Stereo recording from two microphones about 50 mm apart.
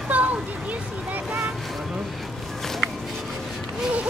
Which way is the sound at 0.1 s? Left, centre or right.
Right.